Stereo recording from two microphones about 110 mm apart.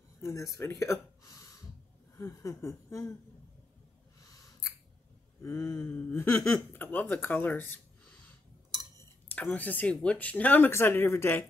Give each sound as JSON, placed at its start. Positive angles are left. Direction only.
{"t": 0.2, "sound": "speech", "side_deg": 25}
{"t": 5.4, "sound": "speech", "side_deg": 20}
{"t": 9.3, "sound": "speech", "side_deg": 15}